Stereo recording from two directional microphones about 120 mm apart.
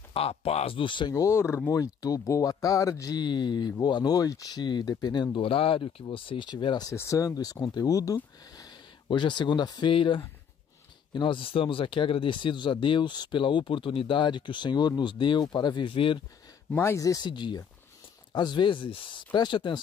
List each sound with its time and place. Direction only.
0.1 s speech: 55° left (ahead or behind); by 1.2 s 40° left (ahead or behind)
1.2 s speech: 20° left (ahead or behind); by 6.9 s 40° left (ahead or behind)
6.9 s speech: 25° left (ahead or behind)
9.1 s speech: 40° left (ahead or behind)
16.7 s speech: 25° left (ahead or behind); by 19.8 s 40° left (ahead or behind)